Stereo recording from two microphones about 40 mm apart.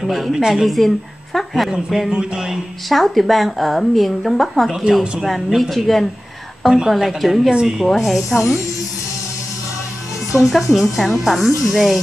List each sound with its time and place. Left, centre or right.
0.0 s a woman's voice: centre
0.7 s speech: centre
2.0 s speech: centre
2.9 s a woman's voice: centre
6.6 s a woman's voice: centre
6.9 s a woman's voice: centre
10.3 s a woman's voice: centre